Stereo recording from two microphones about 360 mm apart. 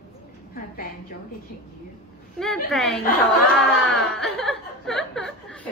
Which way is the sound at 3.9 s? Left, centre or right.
Centre.